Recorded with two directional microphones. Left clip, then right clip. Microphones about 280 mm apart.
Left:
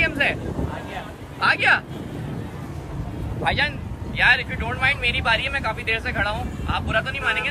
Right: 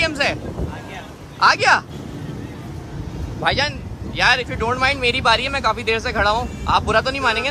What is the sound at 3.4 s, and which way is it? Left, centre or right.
Speech, right.